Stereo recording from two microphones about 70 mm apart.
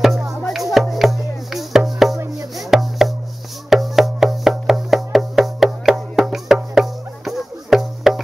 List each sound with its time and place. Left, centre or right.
0.5 s music: centre